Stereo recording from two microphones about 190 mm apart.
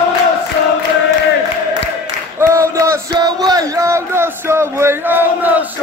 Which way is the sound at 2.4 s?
15° right (ahead or behind).